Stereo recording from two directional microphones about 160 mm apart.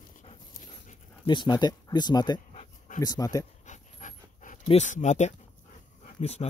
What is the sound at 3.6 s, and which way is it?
Dog, 50° left (ahead or behind).